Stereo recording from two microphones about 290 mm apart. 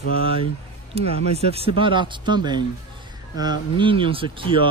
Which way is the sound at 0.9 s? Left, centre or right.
Right.